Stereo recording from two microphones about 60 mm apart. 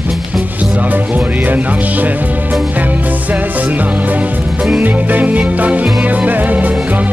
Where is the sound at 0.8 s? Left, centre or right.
Right.